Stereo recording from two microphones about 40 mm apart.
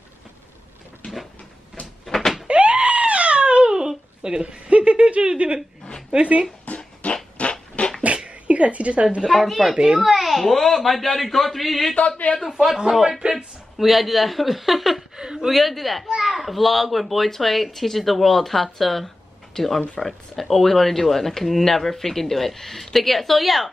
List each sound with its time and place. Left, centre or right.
1.0 s cupboard open or close: left
2.4 s a sound: right
6.1 s speech: right
6.7 s beatboxing: left
7.0 s a sound: left
7.8 s beatboxing: left
8.5 s a sound: right
9.2 s speech: centre
13.2 s speech: right
13.7 s speech: centre
15.1 s chuckle: centre
15.5 s speech: centre